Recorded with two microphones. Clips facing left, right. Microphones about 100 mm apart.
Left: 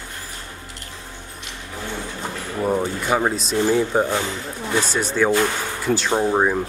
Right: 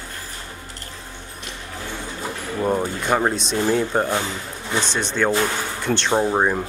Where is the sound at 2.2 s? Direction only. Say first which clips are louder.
Right 1 dB; centre (ahead or behind).